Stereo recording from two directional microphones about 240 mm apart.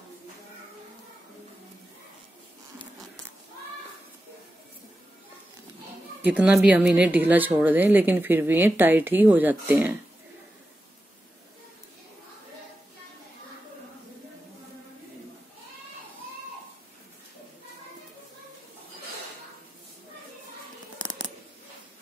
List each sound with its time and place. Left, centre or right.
6.2 s a woman's voice: centre